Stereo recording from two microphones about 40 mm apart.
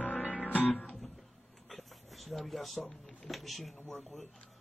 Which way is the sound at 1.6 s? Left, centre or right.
Centre.